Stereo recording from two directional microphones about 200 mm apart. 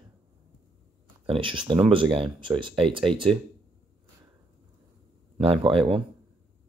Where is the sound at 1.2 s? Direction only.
25° right (ahead or behind).